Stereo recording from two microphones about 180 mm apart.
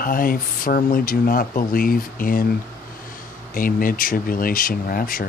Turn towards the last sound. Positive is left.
turn(degrees=50)  # may be behind; listen again after turning